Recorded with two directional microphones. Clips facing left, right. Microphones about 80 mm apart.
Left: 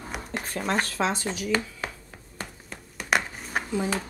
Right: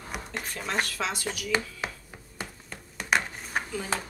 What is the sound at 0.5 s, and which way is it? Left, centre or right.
Speech, left.